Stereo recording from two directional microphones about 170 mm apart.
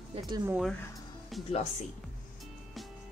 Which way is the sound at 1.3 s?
Centre (ahead or behind).